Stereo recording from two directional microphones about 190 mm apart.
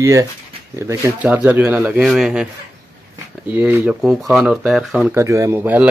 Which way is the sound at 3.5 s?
10° right (ahead or behind).